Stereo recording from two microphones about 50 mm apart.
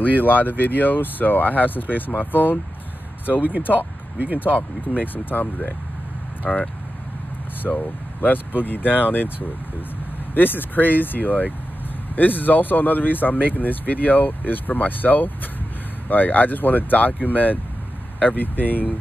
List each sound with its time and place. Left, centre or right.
0.0 s speech: left
4.6 s speech: left
6.4 s speech: centre
7.6 s speech: left